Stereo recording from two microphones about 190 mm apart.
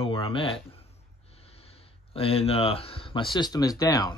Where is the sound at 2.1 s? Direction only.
30° left (ahead or behind).